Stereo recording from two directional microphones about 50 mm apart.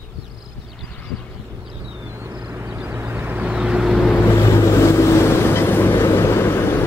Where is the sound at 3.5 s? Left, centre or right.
Centre.